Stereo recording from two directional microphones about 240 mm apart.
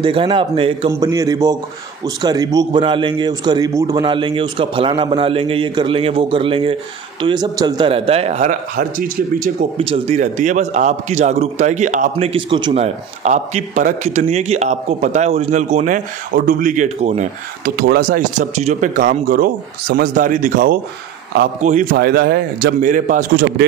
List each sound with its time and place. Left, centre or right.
0.0 s a man's voice: right